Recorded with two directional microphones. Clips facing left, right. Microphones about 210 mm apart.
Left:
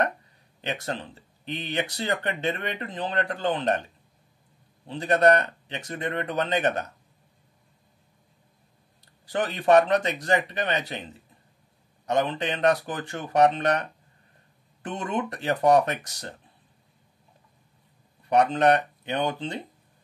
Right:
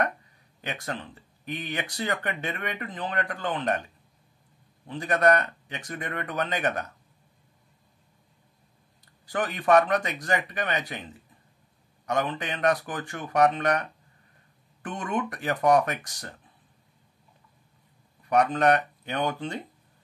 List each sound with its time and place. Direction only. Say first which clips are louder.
0.6 s speech: left 3 dB; 25° left (ahead or behind)
4.8 s speech: left 3 dB; 25° left (ahead or behind)
9.3 s speech: left 2 dB; 25° left (ahead or behind)
12.1 s speech: left 3 dB; 25° left (ahead or behind)
18.3 s speech: left 2 dB; 25° left (ahead or behind)